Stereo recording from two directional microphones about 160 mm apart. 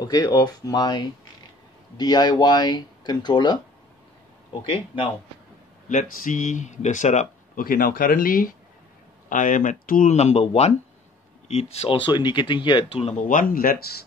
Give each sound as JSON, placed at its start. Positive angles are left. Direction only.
{"t": 0.0, "sound": "speech", "side_deg": 25}
{"t": 5.9, "sound": "speech", "side_deg": 55}
{"t": 10.1, "sound": "speech", "side_deg": 40}
{"t": 12.1, "sound": "speech", "side_deg": 30}
{"t": 13.3, "sound": "speech", "side_deg": 60}